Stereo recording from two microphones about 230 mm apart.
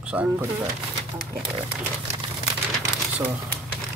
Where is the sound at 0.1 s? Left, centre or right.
Centre.